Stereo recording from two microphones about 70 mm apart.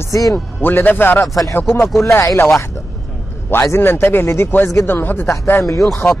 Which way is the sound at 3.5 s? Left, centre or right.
Left.